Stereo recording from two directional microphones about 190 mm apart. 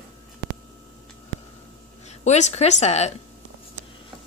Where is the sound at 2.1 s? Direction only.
35° left (ahead or behind).